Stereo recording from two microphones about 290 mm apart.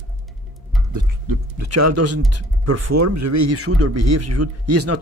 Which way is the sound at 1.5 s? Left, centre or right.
Right.